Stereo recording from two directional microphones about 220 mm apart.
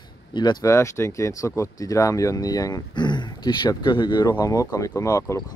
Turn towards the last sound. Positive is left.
turn(degrees=15)  # may be behind; listen again after turning